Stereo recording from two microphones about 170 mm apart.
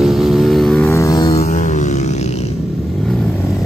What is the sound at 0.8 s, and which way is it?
Vehicle, 20° left (ahead or behind).